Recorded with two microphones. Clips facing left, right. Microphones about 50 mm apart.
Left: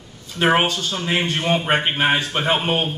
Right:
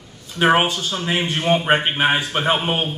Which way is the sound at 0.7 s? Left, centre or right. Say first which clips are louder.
Even; right.